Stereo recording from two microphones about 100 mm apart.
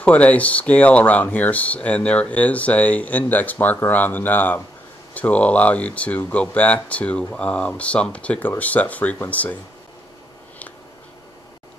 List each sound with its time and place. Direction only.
0.0 s speech: 15° left (ahead or behind)